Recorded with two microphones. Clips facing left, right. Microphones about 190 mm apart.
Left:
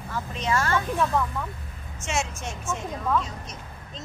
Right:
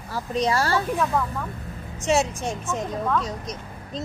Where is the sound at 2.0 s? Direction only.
35° right (ahead or behind).